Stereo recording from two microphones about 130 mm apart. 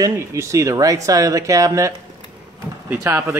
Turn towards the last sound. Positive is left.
turn(degrees=-15)  # may be behind; listen again after turning